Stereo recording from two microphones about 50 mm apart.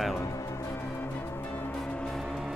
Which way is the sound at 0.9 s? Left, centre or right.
Left.